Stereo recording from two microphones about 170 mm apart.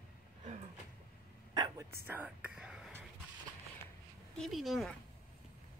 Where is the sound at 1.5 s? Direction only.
25° right (ahead or behind).